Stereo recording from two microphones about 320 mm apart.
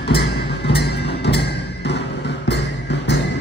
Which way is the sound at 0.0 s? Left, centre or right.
Left.